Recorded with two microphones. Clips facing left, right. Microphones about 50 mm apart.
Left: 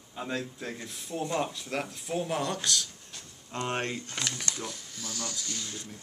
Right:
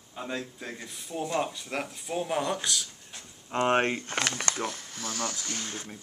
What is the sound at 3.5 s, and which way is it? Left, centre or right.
Speech, right.